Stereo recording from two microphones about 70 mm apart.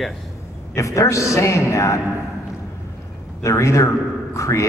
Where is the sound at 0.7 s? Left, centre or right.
Left.